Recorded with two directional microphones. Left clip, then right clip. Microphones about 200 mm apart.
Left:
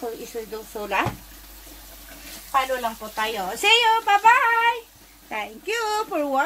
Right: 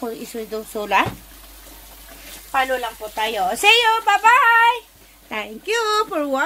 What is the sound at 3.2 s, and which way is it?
A child's voice, 50° right (ahead or behind).